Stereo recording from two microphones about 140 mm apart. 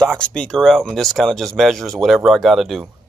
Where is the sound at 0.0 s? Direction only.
5° left (ahead or behind).